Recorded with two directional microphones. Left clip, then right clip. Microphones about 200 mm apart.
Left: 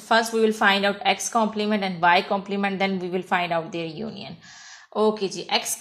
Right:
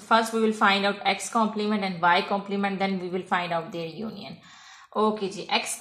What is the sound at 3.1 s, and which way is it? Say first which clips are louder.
Speech: left 3 dB; 45° left (ahead or behind).